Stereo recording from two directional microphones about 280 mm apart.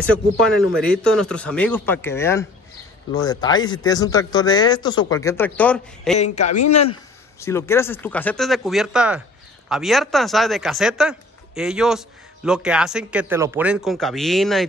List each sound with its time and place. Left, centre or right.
0.0 s speech: centre
6.1 s a man's voice: left
7.3 s speech: centre